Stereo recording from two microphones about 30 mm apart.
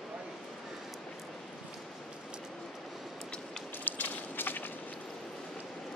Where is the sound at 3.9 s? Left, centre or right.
Left.